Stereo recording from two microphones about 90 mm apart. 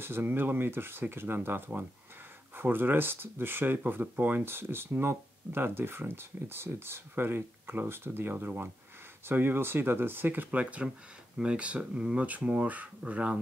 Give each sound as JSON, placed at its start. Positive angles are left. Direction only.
{"t": 0.0, "sound": "speech", "side_deg": -25}